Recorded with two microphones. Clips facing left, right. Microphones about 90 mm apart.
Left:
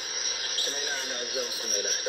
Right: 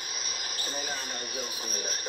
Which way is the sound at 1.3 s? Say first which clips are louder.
Left 6 dB; centre (ahead or behind).